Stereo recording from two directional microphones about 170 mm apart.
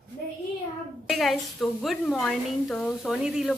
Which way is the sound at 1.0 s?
Centre (ahead or behind).